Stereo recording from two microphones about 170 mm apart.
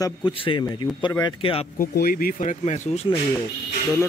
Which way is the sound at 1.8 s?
60° left (ahead or behind).